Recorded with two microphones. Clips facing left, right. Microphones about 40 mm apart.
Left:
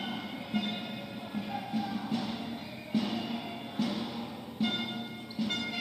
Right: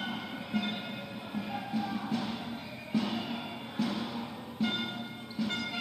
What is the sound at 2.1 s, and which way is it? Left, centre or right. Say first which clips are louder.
Music: even; right.